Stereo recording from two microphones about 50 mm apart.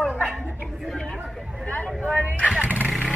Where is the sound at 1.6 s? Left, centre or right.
Left.